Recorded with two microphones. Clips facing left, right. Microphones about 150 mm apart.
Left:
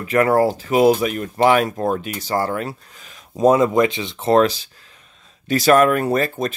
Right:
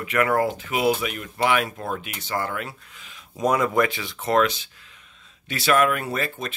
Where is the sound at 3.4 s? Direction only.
25° left (ahead or behind).